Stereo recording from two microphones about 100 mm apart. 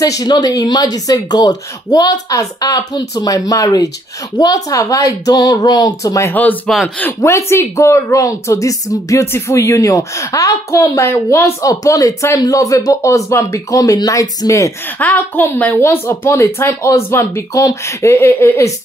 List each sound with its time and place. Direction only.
0.0 s speech: 40° left (ahead or behind)
6.7 s speech: 5° left (ahead or behind)
7.2 s speech: 30° left (ahead or behind)
15.0 s a woman's voice: 20° left (ahead or behind)